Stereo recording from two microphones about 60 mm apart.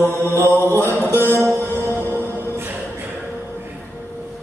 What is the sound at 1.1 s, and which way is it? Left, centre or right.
Music, left.